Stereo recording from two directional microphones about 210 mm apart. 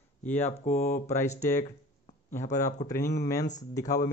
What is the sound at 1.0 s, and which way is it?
Speech, 15° left (ahead or behind).